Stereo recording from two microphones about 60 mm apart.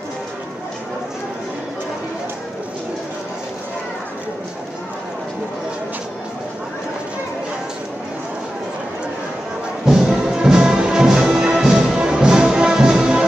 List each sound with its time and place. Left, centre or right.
9.8 s music: centre